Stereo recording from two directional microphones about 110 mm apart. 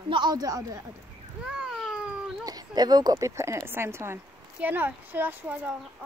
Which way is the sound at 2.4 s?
35° right (ahead or behind).